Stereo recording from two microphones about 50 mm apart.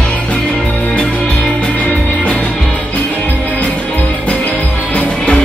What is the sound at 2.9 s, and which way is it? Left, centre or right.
Music, left.